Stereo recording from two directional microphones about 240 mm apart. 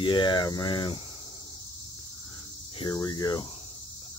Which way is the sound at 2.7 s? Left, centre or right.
Centre.